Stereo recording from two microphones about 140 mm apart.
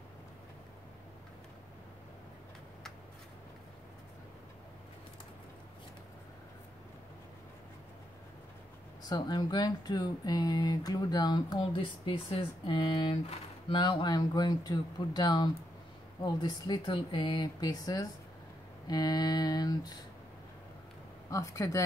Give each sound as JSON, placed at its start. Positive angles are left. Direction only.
{"t": 9.1, "sound": "speech", "side_deg": 30}
{"t": 18.9, "sound": "music", "side_deg": 30}
{"t": 21.3, "sound": "music", "side_deg": 20}